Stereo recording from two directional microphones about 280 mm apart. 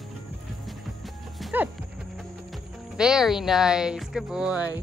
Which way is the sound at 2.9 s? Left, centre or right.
Centre.